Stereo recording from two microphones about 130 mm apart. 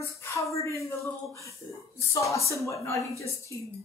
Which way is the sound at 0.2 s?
20° left (ahead or behind).